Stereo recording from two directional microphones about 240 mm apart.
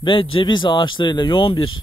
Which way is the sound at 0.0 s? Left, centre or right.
Left.